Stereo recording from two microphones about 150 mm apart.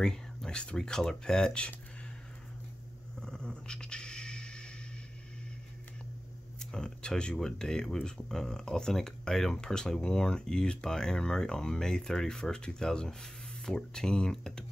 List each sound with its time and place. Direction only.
0.0 s speech: 5° left (ahead or behind)
3.2 s a sound: 5° left (ahead or behind)
6.6 s speech: 5° left (ahead or behind)